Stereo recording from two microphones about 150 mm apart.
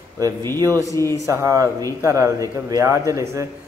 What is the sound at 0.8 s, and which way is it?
Speech, 20° left (ahead or behind).